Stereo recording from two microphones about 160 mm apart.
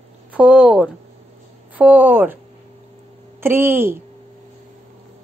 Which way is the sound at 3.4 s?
15° right (ahead or behind).